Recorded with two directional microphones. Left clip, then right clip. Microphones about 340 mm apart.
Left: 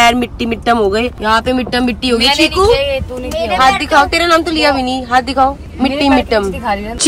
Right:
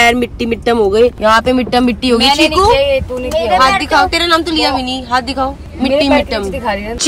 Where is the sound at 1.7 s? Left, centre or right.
Centre.